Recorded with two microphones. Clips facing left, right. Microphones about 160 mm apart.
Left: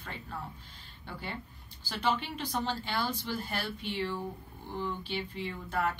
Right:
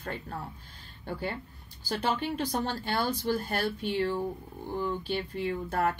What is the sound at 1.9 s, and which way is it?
A woman's voice, 45° right (ahead or behind).